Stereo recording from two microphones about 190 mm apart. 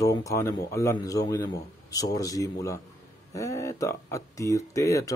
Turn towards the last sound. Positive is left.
turn(degrees=15)  # may be behind; listen again after turning